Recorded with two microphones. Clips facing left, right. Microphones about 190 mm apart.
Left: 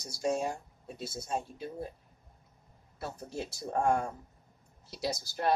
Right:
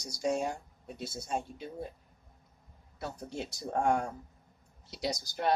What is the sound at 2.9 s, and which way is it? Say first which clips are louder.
Speech: even; 5° left (ahead or behind).